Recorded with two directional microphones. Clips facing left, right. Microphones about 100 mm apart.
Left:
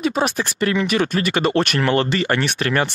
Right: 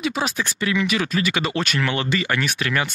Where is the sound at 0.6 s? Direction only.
45° left (ahead or behind).